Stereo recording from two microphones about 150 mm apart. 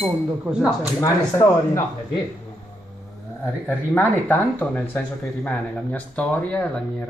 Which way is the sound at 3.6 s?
10° left (ahead or behind).